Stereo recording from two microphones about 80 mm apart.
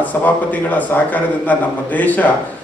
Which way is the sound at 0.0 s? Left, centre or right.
Left.